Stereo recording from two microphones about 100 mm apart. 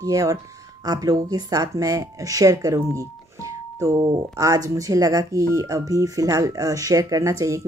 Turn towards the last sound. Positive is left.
turn(degrees=-30)  # may be behind; listen again after turning